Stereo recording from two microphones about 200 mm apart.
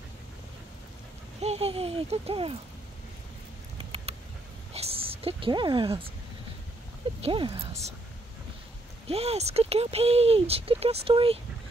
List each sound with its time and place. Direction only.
1.4 s speech: 30° right (ahead or behind)
3.7 s a sound: 30° right (ahead or behind)
7.2 s speech: 25° right (ahead or behind)
9.0 s speech: 30° right (ahead or behind)